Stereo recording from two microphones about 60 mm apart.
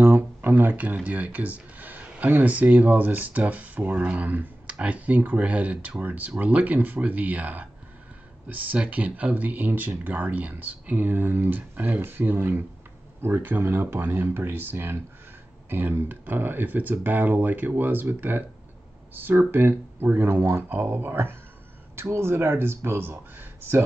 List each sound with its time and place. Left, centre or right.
0.0 s speech: right